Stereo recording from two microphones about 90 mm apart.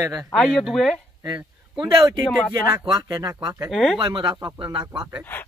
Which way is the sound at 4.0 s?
55° right (ahead or behind).